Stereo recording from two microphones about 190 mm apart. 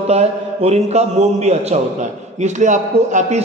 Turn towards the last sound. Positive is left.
turn(degrees=-40)  # may be behind; listen again after turning